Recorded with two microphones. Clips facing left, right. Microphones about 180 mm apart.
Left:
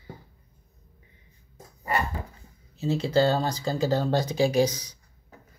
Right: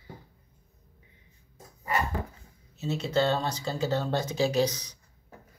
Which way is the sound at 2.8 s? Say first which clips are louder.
Left 4 dB; 30° left (ahead or behind).